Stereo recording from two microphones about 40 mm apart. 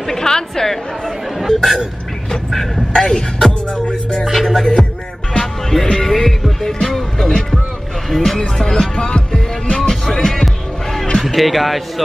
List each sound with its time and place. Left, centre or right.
0.0 s a woman's voice: centre
1.5 s music: centre
2.5 s speech: centre
4.1 s music: centre
6.8 s speech: centre
8.1 s music: centre
8.4 s speech: centre
9.7 s music: left; by 11.8 s centre